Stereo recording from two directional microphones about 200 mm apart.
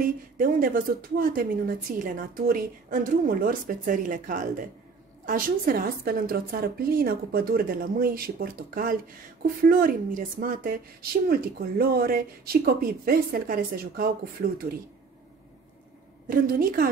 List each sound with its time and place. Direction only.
0.0 s speech: 45° right (ahead or behind)
16.3 s speech: 45° right (ahead or behind)